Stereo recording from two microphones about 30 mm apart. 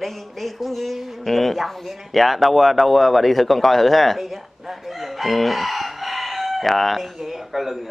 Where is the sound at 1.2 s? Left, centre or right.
Centre.